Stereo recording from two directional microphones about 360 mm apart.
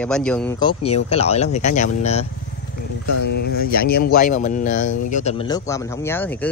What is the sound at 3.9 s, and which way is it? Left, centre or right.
A man's voice, left.